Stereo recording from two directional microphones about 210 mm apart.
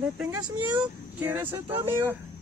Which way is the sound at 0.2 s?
5° right (ahead or behind).